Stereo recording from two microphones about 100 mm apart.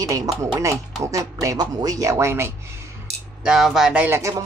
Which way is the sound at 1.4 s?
35° right (ahead or behind).